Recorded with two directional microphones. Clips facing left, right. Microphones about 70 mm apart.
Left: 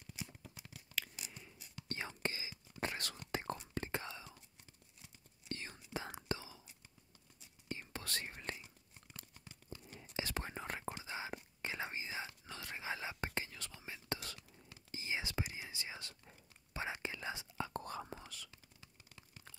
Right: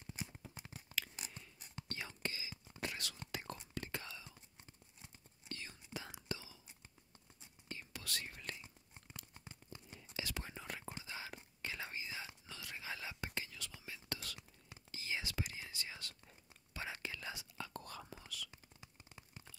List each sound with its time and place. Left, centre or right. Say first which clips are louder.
0.0 s a sound: right 1 dB; right
1.9 s whispering: left 4 dB; left
5.5 s whispering: left 4 dB; left
7.7 s whispering: left 3 dB; left
9.3 s tearing: left 1 dB; right
9.9 s whispering: left 4 dB; left
11.1 s whispering: left 4 dB; left
18.8 s a sound: right 3 dB; right